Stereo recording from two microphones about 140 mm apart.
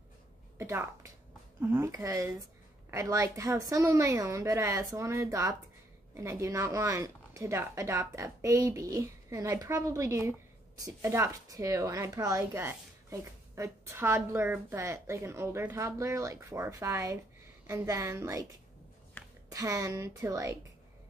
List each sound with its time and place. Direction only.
0.6 s a woman's voice: 20° right (ahead or behind)
19.2 s a sound: 10° left (ahead or behind)
19.5 s a woman's voice: 25° right (ahead or behind)